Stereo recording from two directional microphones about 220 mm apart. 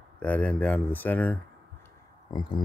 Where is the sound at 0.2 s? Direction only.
5° left (ahead or behind).